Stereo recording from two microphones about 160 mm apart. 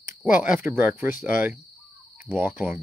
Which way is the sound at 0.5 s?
15° right (ahead or behind).